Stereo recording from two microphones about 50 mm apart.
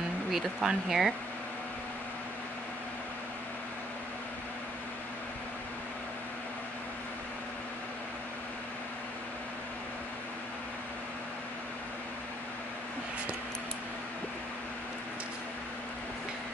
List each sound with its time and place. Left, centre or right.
0.3 s speech: centre